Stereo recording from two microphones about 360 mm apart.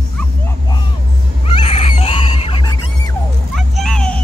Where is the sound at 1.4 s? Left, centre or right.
Centre.